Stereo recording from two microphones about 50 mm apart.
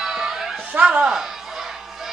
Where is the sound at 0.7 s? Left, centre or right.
Right.